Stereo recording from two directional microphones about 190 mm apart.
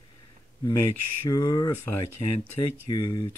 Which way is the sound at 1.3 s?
20° left (ahead or behind).